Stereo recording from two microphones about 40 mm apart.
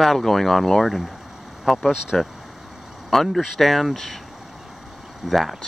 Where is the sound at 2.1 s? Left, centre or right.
Centre.